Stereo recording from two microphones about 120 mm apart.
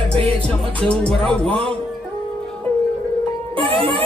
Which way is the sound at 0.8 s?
10° left (ahead or behind).